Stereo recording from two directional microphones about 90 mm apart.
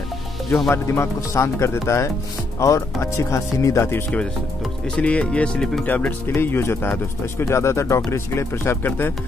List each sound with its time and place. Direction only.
0.7 s speech: 30° left (ahead or behind)
4.9 s speech: 10° left (ahead or behind)
5.9 s speech: 20° left (ahead or behind)